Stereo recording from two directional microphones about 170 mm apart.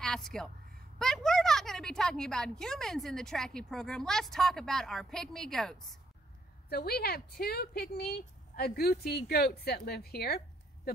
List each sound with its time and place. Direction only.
0.0 s a woman's voice: 5° left (ahead or behind)
6.7 s speech: 65° left (ahead or behind)